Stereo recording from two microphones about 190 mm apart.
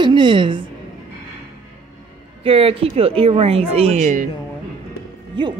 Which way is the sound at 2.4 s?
30° right (ahead or behind).